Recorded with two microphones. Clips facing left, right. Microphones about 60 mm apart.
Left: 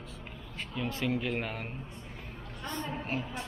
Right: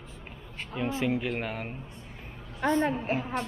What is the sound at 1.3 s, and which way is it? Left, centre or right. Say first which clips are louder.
Speech: right 2 dB; centre.